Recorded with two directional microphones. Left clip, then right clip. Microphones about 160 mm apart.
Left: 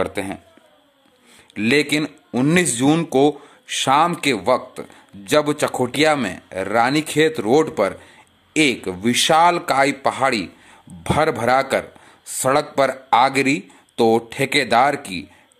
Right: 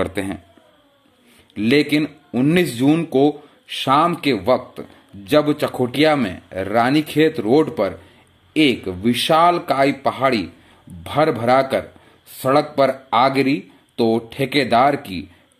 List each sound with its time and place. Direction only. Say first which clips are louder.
0.0 s speech: even; 5° left (ahead or behind)
1.5 s speech: right 1 dB; 15° left (ahead or behind)